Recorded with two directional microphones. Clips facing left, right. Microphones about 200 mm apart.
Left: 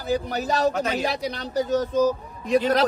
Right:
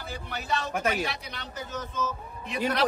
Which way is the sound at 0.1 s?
40° left (ahead or behind).